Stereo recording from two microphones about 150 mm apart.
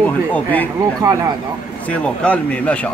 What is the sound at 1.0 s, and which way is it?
Speech, 25° right (ahead or behind).